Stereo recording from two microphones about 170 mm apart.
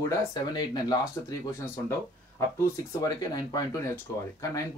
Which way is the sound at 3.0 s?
20° left (ahead or behind).